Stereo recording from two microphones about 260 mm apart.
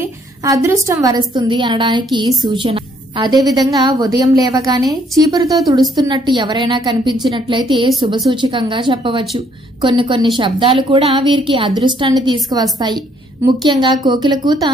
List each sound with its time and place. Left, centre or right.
0.4 s a woman's voice: centre